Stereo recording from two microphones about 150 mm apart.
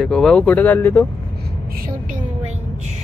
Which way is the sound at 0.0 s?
5° left (ahead or behind).